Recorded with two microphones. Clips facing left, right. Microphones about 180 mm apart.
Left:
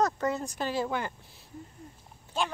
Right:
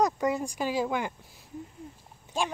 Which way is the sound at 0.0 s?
10° right (ahead or behind).